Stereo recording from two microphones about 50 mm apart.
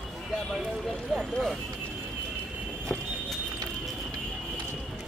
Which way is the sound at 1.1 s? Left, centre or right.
Centre.